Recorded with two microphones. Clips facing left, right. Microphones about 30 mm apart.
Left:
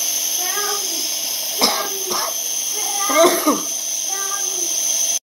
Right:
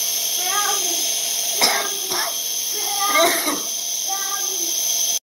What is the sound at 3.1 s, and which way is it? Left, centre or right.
Cough, right.